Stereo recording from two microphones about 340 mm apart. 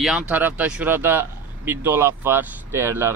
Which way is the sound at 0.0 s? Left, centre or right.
Centre.